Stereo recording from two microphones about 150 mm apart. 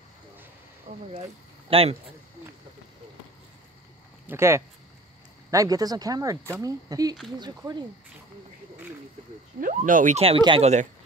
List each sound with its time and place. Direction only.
0.9 s speech: 55° right (ahead or behind)
1.7 s speech: 40° right (ahead or behind)
4.3 s speech: 20° right (ahead or behind)
9.6 s speech: 60° right (ahead or behind)
10.2 s speech: 35° right (ahead or behind)